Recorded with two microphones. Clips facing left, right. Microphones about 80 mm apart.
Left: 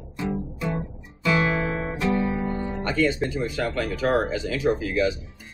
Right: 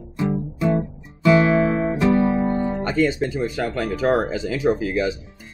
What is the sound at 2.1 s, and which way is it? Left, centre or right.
Guitar, right.